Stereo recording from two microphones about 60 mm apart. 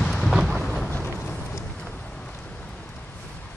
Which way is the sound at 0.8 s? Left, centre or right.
Left.